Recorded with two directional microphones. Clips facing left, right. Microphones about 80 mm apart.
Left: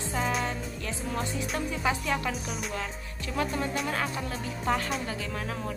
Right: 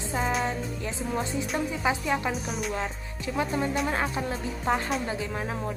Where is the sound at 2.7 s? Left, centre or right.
Centre.